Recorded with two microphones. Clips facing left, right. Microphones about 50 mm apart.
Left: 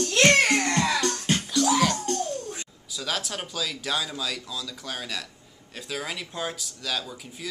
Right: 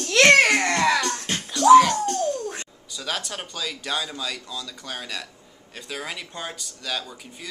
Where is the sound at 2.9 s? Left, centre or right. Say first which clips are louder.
Even; centre.